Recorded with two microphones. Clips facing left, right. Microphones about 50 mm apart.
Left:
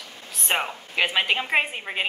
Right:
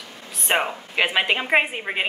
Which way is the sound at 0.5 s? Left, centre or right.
Centre.